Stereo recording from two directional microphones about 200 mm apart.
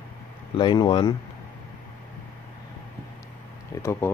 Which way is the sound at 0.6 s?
25° left (ahead or behind).